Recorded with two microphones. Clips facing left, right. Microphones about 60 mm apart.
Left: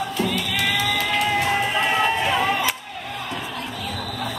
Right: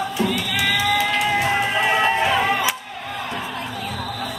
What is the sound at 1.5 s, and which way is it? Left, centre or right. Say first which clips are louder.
Run: right 1 dB; centre.